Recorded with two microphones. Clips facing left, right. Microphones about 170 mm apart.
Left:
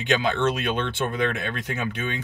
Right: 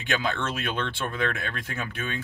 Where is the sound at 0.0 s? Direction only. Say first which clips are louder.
Left 6 dB; 20° left (ahead or behind).